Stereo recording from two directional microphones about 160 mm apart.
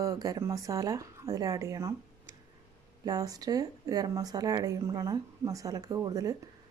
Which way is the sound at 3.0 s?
25° right (ahead or behind).